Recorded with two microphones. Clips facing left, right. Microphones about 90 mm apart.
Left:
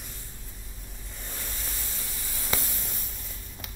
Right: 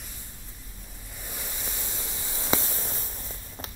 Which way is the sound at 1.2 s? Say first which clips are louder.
Right 2 dB; 10° right (ahead or behind).